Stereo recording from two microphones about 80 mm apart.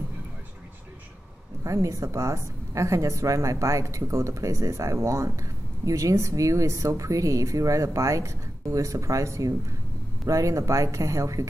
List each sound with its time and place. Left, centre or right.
1.6 s a woman's voice: right